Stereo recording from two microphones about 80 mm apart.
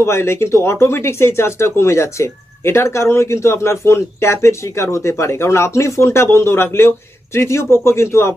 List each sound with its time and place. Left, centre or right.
0.0 s speech: left